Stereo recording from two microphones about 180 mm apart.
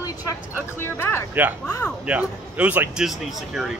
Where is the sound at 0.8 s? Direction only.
15° left (ahead or behind).